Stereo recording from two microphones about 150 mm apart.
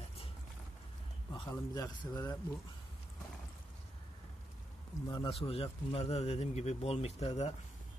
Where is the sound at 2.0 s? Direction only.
25° left (ahead or behind).